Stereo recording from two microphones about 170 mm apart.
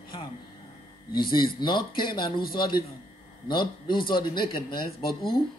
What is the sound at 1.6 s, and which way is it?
Speech, 25° left (ahead or behind).